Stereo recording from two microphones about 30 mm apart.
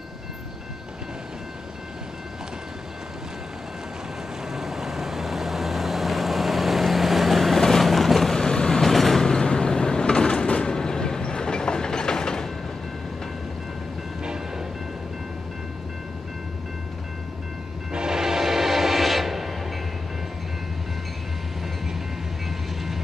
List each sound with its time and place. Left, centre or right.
4.5 s vehicle: centre
8.4 s vehicle: left
8.8 s vehicle: centre
9.2 s vehicle: left
10.7 s train: left
17.9 s train: right
19.0 s music: centre